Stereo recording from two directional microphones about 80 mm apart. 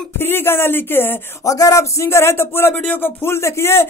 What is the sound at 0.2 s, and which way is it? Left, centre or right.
Speech, left.